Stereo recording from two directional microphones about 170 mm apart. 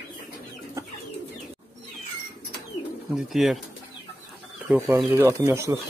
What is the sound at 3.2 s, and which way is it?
Speech, centre (ahead or behind).